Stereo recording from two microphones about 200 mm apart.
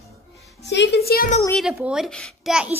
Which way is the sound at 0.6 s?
60° left (ahead or behind).